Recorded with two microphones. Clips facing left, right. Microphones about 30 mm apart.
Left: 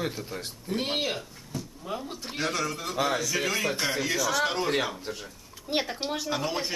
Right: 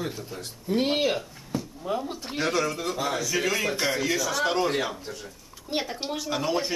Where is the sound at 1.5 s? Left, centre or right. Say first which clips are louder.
Right 6 dB; centre.